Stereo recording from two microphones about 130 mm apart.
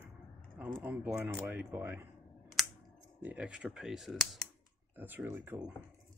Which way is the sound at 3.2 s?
10° right (ahead or behind).